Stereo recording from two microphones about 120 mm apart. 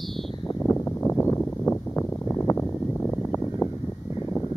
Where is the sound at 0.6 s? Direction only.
15° left (ahead or behind).